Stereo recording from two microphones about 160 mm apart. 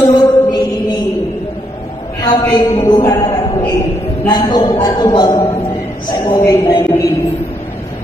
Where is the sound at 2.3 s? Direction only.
25° left (ahead or behind).